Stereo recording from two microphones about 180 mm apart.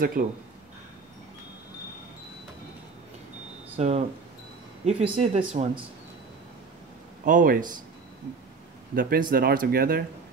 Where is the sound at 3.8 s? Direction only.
35° right (ahead or behind).